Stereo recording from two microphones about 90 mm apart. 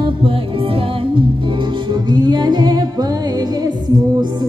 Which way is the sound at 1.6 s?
55° right (ahead or behind).